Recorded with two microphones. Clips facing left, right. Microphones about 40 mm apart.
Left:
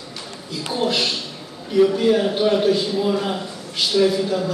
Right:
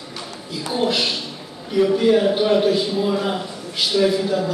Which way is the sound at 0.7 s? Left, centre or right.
Centre.